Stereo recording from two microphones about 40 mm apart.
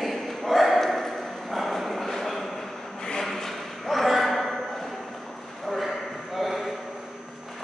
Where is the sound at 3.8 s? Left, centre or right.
Centre.